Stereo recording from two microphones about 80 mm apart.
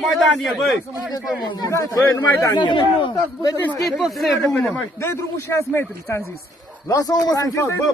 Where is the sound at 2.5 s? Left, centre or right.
Left.